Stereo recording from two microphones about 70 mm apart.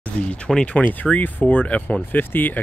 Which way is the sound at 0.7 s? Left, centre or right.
Left.